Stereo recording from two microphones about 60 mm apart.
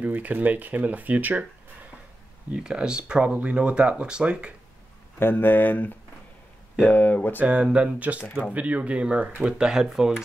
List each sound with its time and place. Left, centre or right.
0.0 s speech: right
2.5 s speech: centre
5.2 s speech: left
7.4 s speech: centre
8.2 s speech: left
8.5 s speech: right